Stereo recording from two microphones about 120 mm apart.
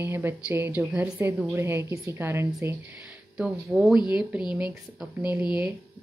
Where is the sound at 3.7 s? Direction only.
5° right (ahead or behind).